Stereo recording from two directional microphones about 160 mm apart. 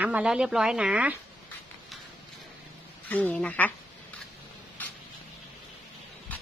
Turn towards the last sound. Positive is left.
turn(degrees=10)  # may be behind; listen again after turning